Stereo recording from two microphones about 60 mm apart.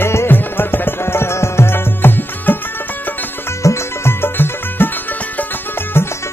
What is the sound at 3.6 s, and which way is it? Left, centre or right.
Music, left.